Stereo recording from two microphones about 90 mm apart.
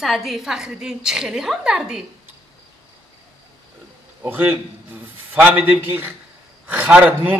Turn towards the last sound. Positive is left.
turn(degrees=-20)  # may be behind; listen again after turning